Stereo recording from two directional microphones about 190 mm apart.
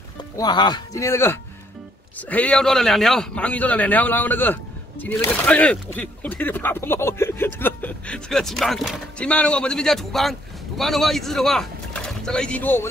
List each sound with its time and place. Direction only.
0.2 s a man's voice: 25° left (ahead or behind)